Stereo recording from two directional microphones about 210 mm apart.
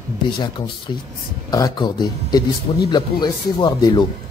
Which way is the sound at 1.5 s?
20° left (ahead or behind).